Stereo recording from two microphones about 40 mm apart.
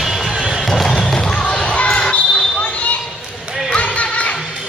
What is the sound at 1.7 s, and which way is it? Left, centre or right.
Basketball bounce, left.